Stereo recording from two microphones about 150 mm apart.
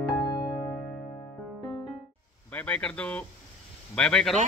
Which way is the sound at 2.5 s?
10° left (ahead or behind).